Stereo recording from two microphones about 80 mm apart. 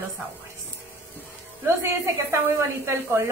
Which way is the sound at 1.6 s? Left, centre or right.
Right.